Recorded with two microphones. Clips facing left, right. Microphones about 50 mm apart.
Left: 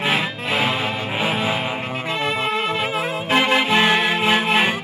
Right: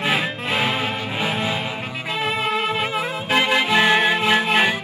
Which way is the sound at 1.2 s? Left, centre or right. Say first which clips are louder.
Left 2 dB; centre.